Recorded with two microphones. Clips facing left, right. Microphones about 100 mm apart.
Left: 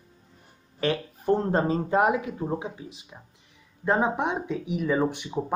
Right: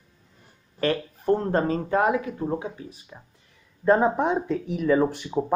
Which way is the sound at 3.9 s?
15° left (ahead or behind).